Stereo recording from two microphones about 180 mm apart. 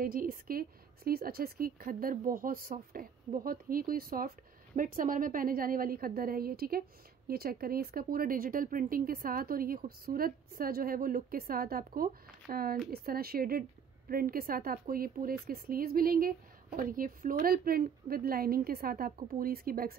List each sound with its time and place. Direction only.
0.0 s a woman's voice: 50° right (ahead or behind)